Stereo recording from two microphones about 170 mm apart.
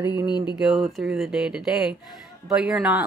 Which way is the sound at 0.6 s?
Centre (ahead or behind).